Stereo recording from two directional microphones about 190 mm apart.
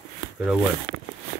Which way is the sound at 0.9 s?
50° right (ahead or behind).